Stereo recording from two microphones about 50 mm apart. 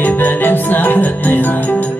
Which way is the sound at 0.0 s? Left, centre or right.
Left.